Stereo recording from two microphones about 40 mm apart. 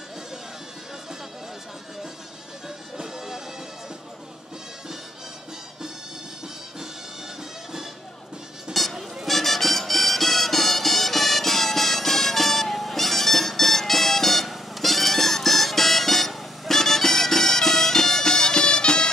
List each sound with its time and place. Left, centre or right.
8.7 s music: centre